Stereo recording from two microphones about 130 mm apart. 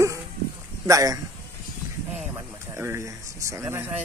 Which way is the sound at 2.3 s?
20° right (ahead or behind).